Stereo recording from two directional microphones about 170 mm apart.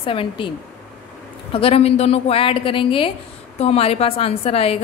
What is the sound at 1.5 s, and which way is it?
A woman's voice, 35° left (ahead or behind).